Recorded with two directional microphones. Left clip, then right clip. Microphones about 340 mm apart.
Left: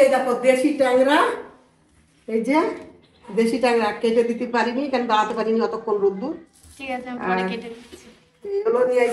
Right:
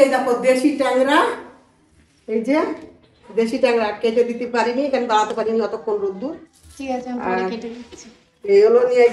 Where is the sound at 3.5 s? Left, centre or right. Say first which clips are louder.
Right 3 dB; centre.